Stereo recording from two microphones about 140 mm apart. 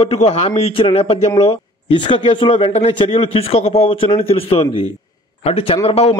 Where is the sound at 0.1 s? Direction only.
50° left (ahead or behind).